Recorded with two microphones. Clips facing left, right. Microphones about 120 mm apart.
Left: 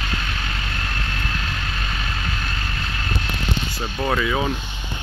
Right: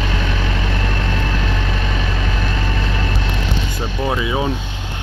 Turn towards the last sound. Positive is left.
turn(degrees=-20)  # may be behind; listen again after turning